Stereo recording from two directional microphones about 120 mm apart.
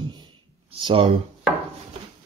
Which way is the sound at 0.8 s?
50° right (ahead or behind).